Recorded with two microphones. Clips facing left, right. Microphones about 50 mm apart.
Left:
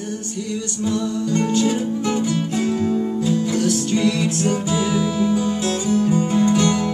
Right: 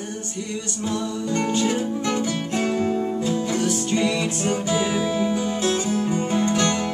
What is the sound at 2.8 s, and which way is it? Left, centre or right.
Music, centre.